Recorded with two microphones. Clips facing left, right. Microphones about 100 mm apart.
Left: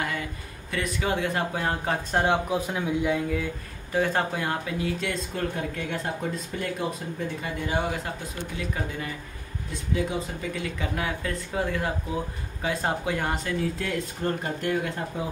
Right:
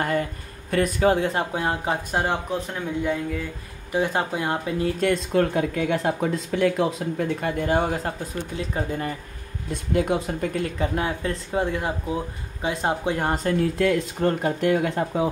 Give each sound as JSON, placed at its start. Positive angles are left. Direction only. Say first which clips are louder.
{"t": 0.0, "sound": "speech", "louder": "right 6 dB", "side_deg": -45}
{"t": 2.0, "sound": "speech", "louder": "left 3 dB", "side_deg": -5}
{"t": 2.5, "sound": "speech", "louder": "left 1 dB", "side_deg": 5}
{"t": 3.9, "sound": "speech", "louder": "right 2 dB", "side_deg": -20}
{"t": 5.0, "sound": "speech", "louder": "right 9 dB", "side_deg": -70}
{"t": 9.7, "sound": "speech", "louder": "right 6 dB", "side_deg": -60}
{"t": 11.0, "sound": "speech", "louder": "right 4 dB", "side_deg": -30}
{"t": 13.7, "sound": "speech", "louder": "right 8 dB", "side_deg": -65}